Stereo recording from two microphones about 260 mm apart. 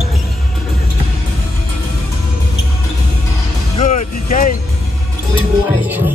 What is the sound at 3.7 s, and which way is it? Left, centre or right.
Music, left.